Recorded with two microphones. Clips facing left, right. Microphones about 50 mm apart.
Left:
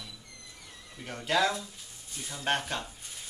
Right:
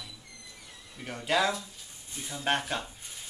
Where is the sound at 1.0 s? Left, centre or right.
Centre.